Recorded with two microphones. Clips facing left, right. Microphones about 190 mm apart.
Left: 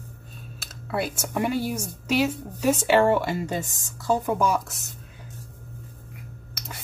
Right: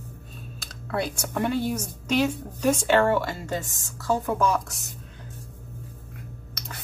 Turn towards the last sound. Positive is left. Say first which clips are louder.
# even
turn(degrees=5)  # may be behind; listen again after turning